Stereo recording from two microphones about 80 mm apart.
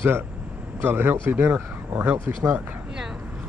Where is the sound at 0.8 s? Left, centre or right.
Right.